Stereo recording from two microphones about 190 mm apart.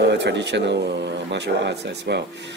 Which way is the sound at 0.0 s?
65° right (ahead or behind).